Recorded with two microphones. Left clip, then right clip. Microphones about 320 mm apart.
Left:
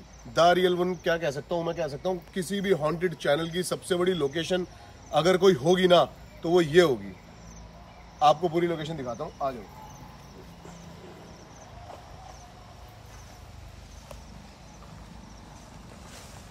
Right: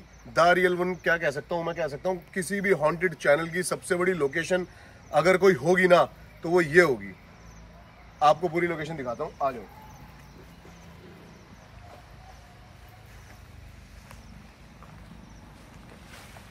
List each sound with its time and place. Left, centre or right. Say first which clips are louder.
0.3 s a man's voice: even; centre
8.2 s a man's voice: even; centre